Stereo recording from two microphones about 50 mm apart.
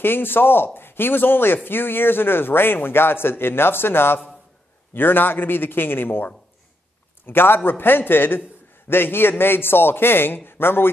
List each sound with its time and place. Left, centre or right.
0.0 s a man's voice: left